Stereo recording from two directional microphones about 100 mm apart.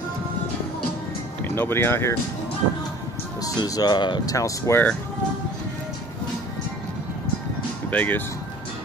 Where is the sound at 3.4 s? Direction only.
40° left (ahead or behind).